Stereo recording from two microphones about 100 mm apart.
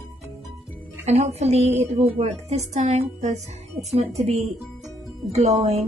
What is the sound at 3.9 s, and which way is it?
Speech, 90° right.